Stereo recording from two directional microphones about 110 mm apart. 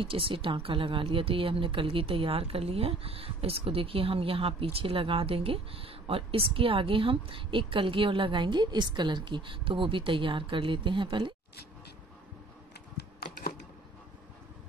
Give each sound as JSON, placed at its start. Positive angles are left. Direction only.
{"t": 0.0, "sound": "a woman's voice", "side_deg": -50}